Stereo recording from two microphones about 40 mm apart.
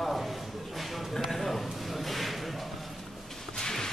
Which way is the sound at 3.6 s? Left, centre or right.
Centre.